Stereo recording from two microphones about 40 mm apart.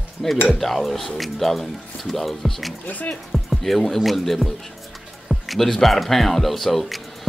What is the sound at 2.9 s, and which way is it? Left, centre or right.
Speech, left.